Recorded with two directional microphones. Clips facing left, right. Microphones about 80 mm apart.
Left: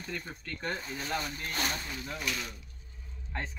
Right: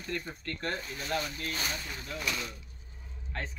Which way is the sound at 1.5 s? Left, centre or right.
Left.